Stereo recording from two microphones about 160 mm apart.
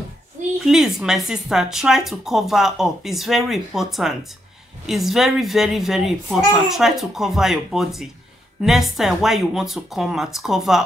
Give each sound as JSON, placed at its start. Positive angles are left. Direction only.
{"t": 0.7, "sound": "speech", "side_deg": 0}